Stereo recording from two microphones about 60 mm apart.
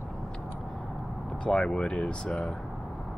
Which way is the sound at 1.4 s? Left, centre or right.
Centre.